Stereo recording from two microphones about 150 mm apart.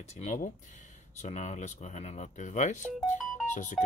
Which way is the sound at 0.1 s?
50° left (ahead or behind).